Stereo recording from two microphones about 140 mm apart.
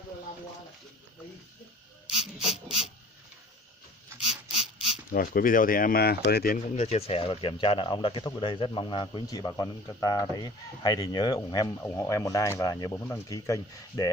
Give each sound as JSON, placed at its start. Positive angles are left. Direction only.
{"t": 2.5, "sound": "printer", "side_deg": 45}
{"t": 4.6, "sound": "a sound", "side_deg": 45}
{"t": 5.1, "sound": "speech", "side_deg": 85}
{"t": 6.8, "sound": "speech", "side_deg": 50}